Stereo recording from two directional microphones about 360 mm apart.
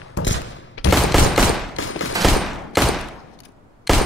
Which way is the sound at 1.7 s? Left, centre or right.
Left.